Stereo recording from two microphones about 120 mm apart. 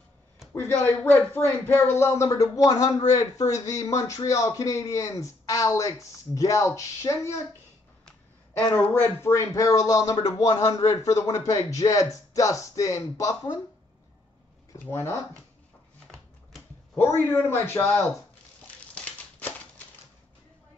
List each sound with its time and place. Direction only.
0.5 s speech: 15° left (ahead or behind)
8.7 s speech: 20° left (ahead or behind)
16.9 s a man's voice: 15° left (ahead or behind)